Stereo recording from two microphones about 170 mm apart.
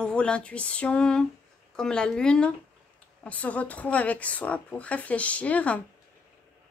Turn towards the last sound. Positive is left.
turn(degrees=10)  # may be behind; listen again after turning